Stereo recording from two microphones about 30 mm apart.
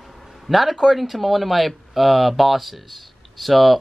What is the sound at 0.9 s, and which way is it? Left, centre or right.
Speech, centre.